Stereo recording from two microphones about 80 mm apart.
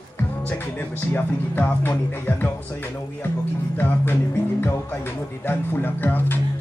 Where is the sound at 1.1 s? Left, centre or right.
Left.